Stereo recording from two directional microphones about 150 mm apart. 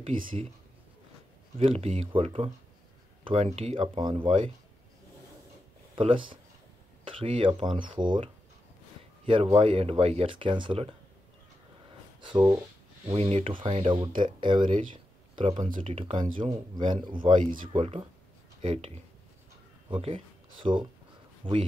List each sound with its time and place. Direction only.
0.1 s speech: 65° right (ahead or behind)
1.6 s speech: 40° right (ahead or behind)
5.9 s speech: 35° right (ahead or behind)
12.2 s speech: 30° right (ahead or behind)
19.9 s speech: 35° right (ahead or behind)